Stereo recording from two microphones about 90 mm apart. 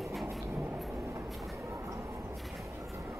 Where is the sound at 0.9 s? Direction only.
35° right (ahead or behind).